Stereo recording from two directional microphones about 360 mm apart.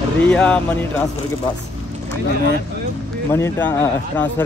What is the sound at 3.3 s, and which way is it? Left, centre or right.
Speech, centre.